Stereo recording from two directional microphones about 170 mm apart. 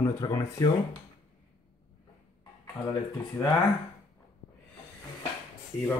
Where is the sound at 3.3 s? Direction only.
20° left (ahead or behind).